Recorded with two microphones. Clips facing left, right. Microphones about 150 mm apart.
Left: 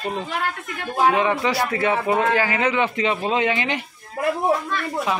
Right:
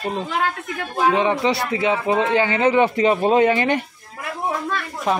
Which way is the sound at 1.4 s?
20° right (ahead or behind).